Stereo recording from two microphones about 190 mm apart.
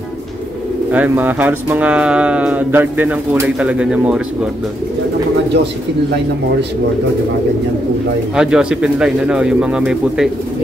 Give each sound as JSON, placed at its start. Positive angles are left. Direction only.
{"t": 0.9, "sound": "speech", "side_deg": -10}
{"t": 8.4, "sound": "speech", "side_deg": -5}